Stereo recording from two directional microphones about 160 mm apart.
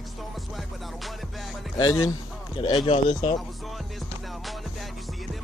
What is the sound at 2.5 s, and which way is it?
Speech, 30° left (ahead or behind).